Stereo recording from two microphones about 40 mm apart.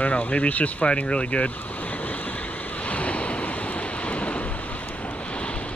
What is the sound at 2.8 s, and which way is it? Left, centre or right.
Waves, left.